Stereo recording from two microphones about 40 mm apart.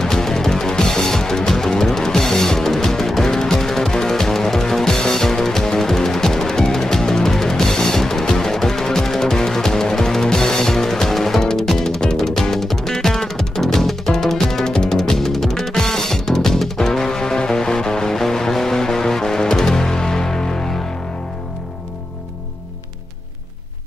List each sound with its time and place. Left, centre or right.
0.0 s music: centre